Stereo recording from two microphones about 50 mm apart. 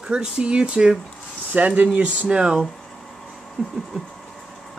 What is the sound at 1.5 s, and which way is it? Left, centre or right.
Speech, right.